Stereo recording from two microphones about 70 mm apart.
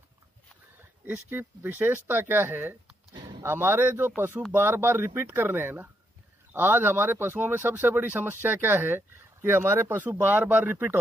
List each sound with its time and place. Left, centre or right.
1.0 s speech: right